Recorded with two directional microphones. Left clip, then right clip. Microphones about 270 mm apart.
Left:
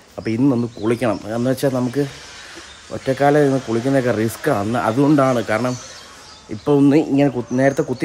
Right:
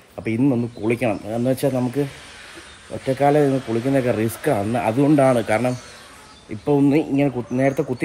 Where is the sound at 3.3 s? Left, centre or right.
Centre.